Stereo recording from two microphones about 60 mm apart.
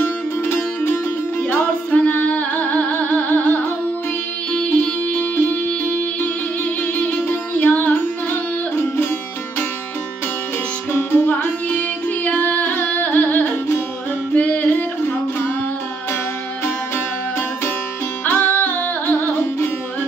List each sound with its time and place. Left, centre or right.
0.0 s music: left
10.9 s music: left
18.2 s music: left